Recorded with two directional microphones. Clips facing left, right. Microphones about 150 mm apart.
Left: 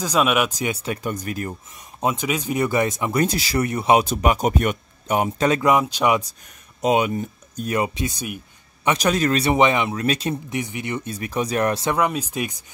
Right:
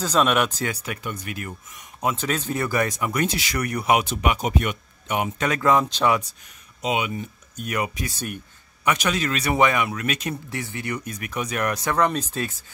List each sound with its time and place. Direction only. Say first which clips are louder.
0.0 s speech: left 1 dB; 10° left (ahead or behind)
1.0 s speech: left 6 dB; 40° left (ahead or behind)
2.1 s speech: left 3 dB; 10° left (ahead or behind)
4.0 s speech: left 4 dB; 40° left (ahead or behind)
5.6 s speech: left 1 dB; 15° left (ahead or behind)
6.8 s speech: left 6 dB; 45° left (ahead or behind); by 8.1 s 25° left (ahead or behind)
8.9 s speech: left 8 dB; 40° left (ahead or behind)
9.5 s speech: even; 25° left (ahead or behind)
10.5 s speech: left 3 dB; 20° left (ahead or behind)
11.9 s speech: even; 10° left (ahead or behind)